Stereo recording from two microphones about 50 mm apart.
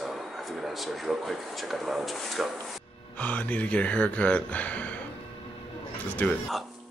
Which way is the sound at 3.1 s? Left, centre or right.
Left.